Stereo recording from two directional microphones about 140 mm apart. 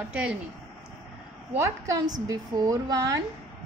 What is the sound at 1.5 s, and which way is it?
A woman's voice, 20° right (ahead or behind).